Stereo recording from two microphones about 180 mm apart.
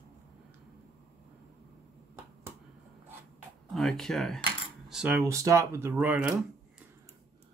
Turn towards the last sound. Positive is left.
turn(degrees=-5)  # may be behind; listen again after turning